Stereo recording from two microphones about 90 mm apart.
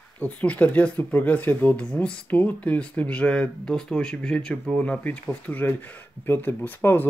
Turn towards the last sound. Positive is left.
turn(degrees=25)  # may be behind; listen again after turning